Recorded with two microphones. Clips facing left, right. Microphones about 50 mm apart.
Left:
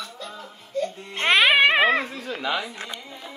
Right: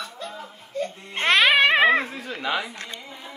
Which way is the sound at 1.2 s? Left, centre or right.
Centre.